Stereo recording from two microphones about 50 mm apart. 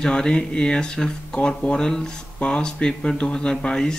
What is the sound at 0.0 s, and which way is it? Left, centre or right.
Speech, centre.